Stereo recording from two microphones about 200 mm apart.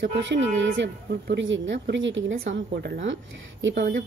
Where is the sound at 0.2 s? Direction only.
65° right (ahead or behind).